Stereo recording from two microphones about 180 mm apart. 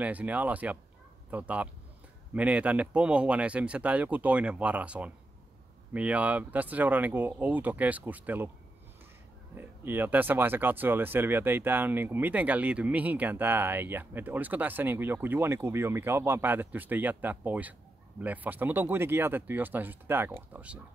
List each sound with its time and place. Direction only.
0.0 s speech: 10° right (ahead or behind)
9.6 s speech: 10° right (ahead or behind)